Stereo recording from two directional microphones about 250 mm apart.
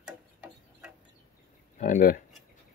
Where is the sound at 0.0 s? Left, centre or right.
Centre.